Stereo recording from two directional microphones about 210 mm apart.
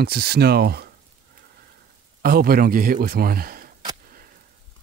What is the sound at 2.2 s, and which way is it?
A man's voice, 45° right (ahead or behind).